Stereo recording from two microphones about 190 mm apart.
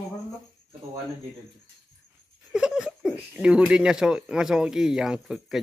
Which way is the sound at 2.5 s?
5° right (ahead or behind).